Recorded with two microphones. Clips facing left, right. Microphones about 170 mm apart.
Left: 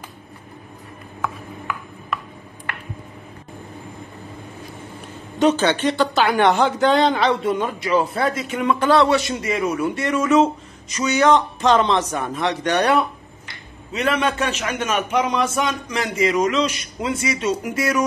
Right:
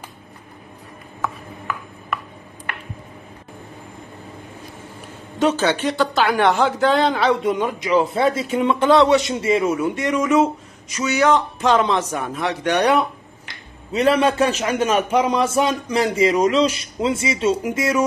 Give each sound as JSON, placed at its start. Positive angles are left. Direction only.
{"t": 5.4, "sound": "speech", "side_deg": -5}
{"t": 13.9, "sound": "a man's voice", "side_deg": -35}